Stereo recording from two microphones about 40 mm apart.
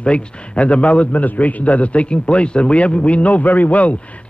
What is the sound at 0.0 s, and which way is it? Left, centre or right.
A man's voice, left.